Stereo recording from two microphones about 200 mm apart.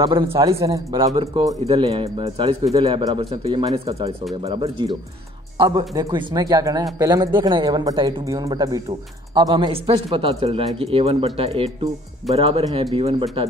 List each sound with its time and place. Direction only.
0.0 s speech: 25° right (ahead or behind)
3.2 s speech: 30° right (ahead or behind)